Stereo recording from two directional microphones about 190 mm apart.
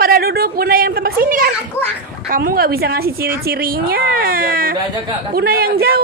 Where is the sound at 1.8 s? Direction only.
10° left (ahead or behind).